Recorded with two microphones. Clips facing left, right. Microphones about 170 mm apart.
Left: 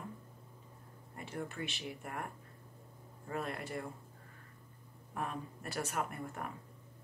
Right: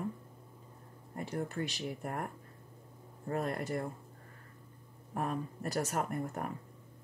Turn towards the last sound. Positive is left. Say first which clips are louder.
# right 4 dB
turn(degrees=-40)  # may be behind; listen again after turning